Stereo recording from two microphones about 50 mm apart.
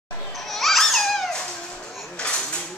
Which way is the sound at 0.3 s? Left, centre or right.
Centre.